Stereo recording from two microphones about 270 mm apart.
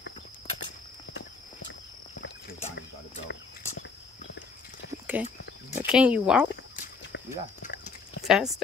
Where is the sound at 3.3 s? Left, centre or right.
Left.